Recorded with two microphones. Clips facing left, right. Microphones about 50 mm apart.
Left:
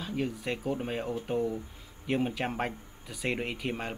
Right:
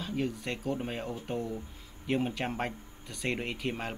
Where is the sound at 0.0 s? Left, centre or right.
Centre.